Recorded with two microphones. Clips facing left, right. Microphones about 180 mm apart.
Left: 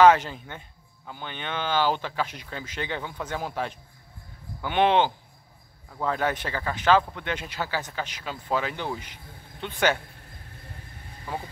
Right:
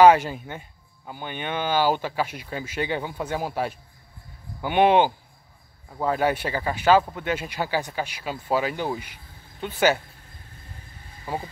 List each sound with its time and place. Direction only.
0.0 s speech: 10° right (ahead or behind)
11.3 s speech: 10° right (ahead or behind)